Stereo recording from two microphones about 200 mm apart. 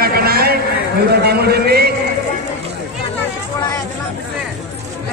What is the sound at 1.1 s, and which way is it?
Speech, 55° right (ahead or behind).